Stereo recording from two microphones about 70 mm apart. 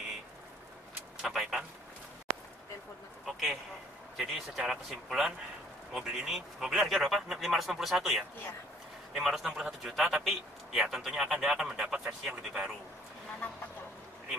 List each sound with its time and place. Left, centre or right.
1.2 s speech: centre
3.3 s a sound: centre
4.2 s a man's voice: centre